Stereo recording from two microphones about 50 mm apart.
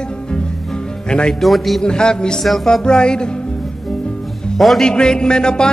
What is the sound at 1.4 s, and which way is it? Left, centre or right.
Speech, centre.